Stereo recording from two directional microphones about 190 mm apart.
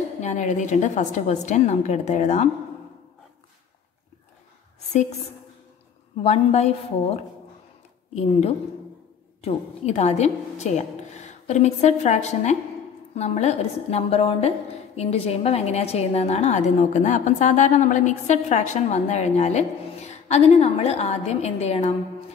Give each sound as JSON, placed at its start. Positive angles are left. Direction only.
{"t": 0.2, "sound": "a woman's voice", "side_deg": 40}
{"t": 6.2, "sound": "a woman's voice", "side_deg": 35}